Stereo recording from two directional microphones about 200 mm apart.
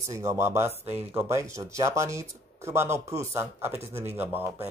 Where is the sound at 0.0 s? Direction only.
15° right (ahead or behind).